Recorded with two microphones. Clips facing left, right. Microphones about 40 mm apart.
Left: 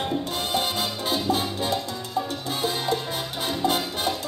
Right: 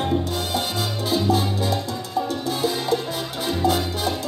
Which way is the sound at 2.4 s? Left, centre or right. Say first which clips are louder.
Right 3 dB; left.